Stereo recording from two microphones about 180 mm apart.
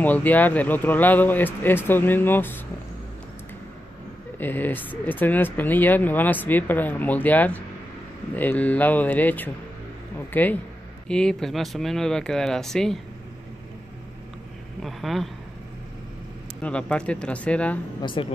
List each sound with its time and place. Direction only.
0.0 s speech: 10° left (ahead or behind)
4.4 s speech: 10° left (ahead or behind)
14.8 s speech: centre (ahead or behind)
16.6 s speech: 5° left (ahead or behind)
18.0 s a woman's voice: 30° left (ahead or behind)